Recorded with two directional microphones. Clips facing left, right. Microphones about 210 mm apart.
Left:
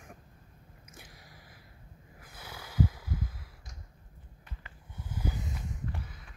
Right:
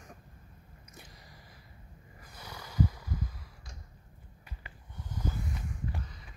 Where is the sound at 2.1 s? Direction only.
5° left (ahead or behind).